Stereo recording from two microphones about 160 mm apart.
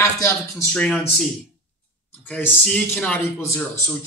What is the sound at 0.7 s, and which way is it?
Speech, 5° left (ahead or behind).